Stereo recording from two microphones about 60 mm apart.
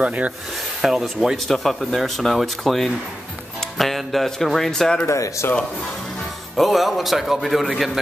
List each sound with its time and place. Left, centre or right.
0.0 s speech: right
0.8 s speech: centre
5.0 s speech: left
6.5 s speech: centre